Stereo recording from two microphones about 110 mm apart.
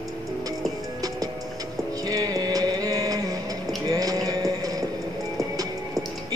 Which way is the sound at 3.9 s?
35° right (ahead or behind).